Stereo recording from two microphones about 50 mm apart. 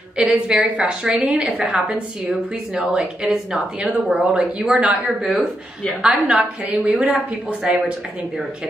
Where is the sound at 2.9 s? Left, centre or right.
Centre.